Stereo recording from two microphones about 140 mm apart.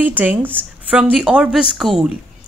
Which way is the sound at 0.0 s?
10° right (ahead or behind).